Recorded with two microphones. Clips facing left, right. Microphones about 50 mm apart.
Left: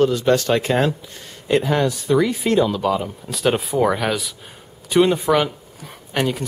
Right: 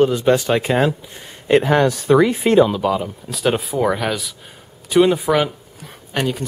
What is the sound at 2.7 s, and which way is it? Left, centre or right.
Speech, centre.